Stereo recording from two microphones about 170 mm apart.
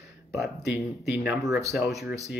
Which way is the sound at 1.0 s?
Centre (ahead or behind).